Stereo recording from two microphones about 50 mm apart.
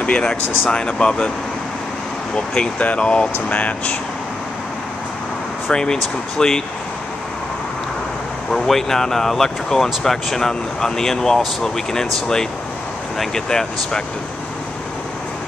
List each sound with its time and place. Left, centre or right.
0.0 s speech: centre
2.5 s speech: left
5.7 s speech: centre
8.5 s speech: centre